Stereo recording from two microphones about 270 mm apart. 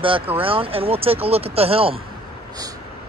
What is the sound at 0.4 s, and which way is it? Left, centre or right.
Speech, centre.